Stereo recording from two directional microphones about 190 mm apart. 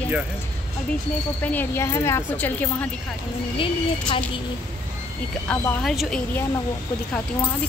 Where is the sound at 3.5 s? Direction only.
25° left (ahead or behind).